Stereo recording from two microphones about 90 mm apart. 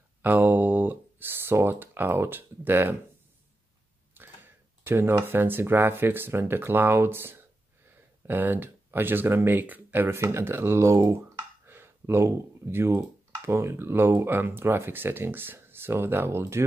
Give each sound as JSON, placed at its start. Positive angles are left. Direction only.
{"t": 0.2, "sound": "speech", "side_deg": -20}
{"t": 4.2, "sound": "a sound", "side_deg": -25}
{"t": 4.8, "sound": "speech", "side_deg": -25}